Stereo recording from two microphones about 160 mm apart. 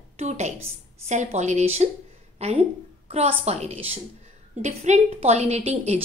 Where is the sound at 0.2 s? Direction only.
45° right (ahead or behind).